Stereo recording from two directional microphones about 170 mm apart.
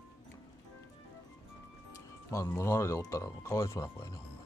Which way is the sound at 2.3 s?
15° left (ahead or behind).